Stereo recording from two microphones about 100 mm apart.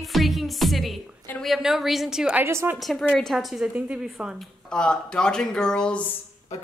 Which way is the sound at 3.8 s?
15° right (ahead or behind).